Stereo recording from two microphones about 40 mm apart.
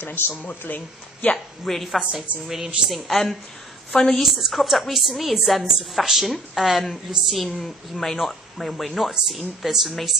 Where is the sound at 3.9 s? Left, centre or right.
Centre.